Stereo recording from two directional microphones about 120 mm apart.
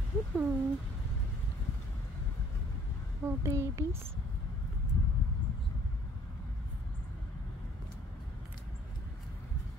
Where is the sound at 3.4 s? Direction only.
25° right (ahead or behind).